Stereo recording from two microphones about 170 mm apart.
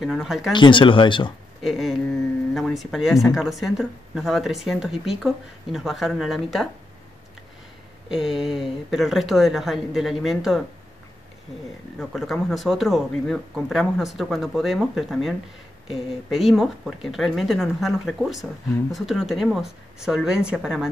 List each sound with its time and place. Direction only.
0.0 s speech: centre (ahead or behind)
0.5 s speech: 30° left (ahead or behind)
1.6 s speech: centre (ahead or behind)
8.1 s speech: centre (ahead or behind)
12.0 s speech: centre (ahead or behind)